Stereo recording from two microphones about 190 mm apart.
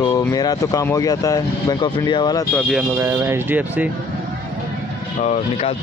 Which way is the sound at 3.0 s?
15° right (ahead or behind).